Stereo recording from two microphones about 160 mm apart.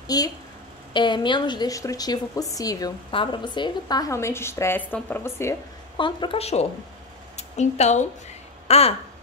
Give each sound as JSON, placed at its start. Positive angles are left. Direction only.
{"t": 0.0, "sound": "a woman's voice", "side_deg": 25}
{"t": 5.9, "sound": "a woman's voice", "side_deg": 30}
{"t": 8.6, "sound": "a sound", "side_deg": 40}